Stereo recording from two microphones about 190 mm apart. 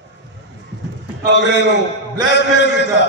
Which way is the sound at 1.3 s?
65° left (ahead or behind).